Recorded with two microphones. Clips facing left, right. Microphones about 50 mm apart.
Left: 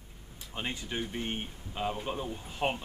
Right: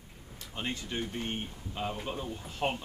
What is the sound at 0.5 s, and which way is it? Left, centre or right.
Speech, centre.